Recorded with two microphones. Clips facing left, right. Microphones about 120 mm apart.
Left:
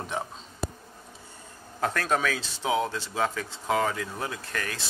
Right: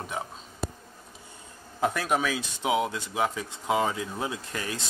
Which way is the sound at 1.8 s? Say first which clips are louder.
Even; 10° right (ahead or behind).